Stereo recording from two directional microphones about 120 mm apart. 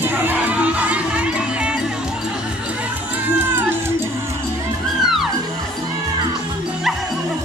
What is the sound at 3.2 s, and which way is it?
Music, 15° right (ahead or behind).